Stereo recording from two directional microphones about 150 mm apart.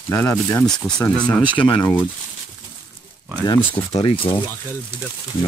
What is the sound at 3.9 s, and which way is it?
Speech, 35° left (ahead or behind).